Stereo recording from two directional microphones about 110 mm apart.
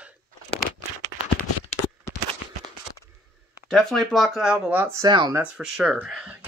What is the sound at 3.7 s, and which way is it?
Speech, 5° left (ahead or behind).